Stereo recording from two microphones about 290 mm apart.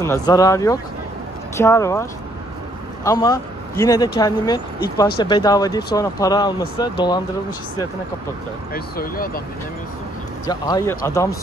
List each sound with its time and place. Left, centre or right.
0.0 s speech: centre
8.7 s speech: left
10.4 s speech: centre